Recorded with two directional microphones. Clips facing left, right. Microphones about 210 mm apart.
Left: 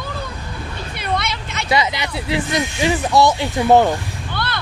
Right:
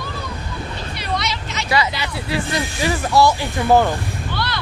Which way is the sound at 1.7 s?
20° left (ahead or behind).